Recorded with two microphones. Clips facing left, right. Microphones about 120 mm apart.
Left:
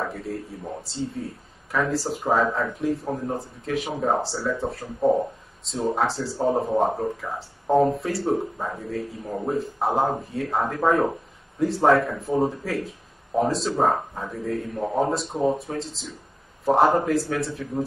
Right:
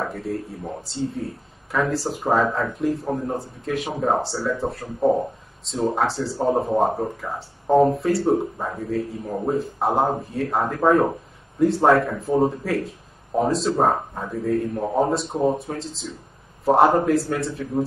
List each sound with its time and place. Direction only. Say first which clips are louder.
0.9 s speech: right 4 dB; centre (ahead or behind)